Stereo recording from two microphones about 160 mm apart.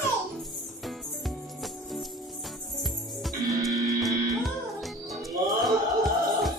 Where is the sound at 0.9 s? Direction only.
Centre (ahead or behind).